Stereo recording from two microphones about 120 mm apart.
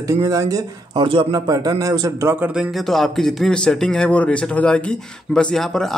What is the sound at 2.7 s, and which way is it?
Speech, centre (ahead or behind).